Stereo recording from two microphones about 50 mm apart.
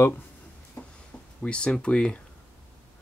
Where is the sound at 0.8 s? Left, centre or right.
Left.